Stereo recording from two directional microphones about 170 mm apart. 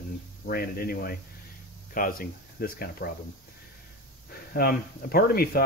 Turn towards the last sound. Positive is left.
turn(degrees=60)  # may be behind; listen again after turning